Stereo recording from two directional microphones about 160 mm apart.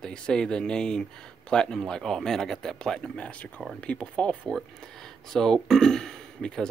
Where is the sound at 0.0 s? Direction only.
5° left (ahead or behind).